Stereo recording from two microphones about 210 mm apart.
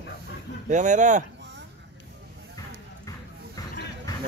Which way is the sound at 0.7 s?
35° right (ahead or behind).